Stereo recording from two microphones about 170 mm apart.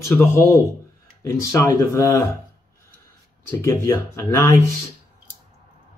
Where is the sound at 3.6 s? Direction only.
15° left (ahead or behind).